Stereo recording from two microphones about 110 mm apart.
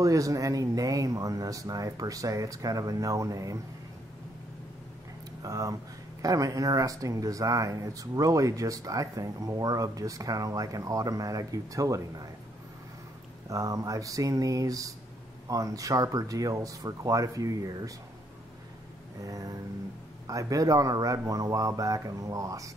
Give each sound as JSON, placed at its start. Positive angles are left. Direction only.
{"t": 0.0, "sound": "speech", "side_deg": -30}
{"t": 5.4, "sound": "speech", "side_deg": -30}
{"t": 13.5, "sound": "speech", "side_deg": -30}
{"t": 19.2, "sound": "speech", "side_deg": -30}